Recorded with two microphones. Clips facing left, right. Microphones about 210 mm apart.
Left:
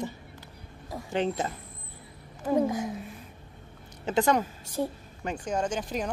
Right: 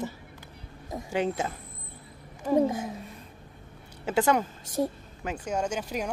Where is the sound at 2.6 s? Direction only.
25° right (ahead or behind).